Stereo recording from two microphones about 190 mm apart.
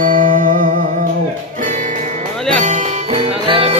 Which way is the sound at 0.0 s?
45° right (ahead or behind).